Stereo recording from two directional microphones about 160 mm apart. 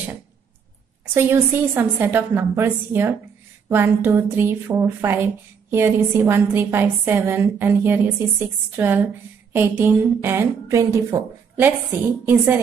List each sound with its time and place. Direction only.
1.1 s speech: 15° right (ahead or behind)